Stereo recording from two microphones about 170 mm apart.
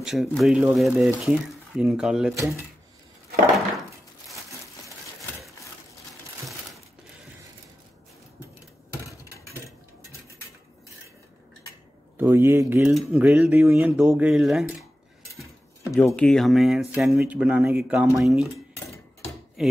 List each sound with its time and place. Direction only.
0.0 s speech: centre (ahead or behind)
12.2 s a man's voice: 15° right (ahead or behind)
15.9 s speech: 15° left (ahead or behind)
16.2 s speech: 5° left (ahead or behind)
19.6 s speech: centre (ahead or behind)